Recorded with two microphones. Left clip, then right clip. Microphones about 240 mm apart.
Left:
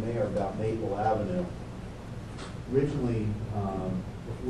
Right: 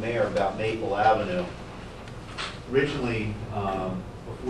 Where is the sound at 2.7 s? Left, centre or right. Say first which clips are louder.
Right 4 dB; centre.